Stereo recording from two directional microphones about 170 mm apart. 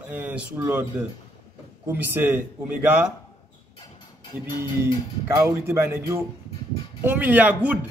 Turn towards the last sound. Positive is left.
turn(degrees=-10)  # may be behind; listen again after turning